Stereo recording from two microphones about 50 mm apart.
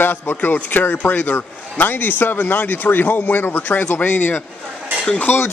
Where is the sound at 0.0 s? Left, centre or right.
Left.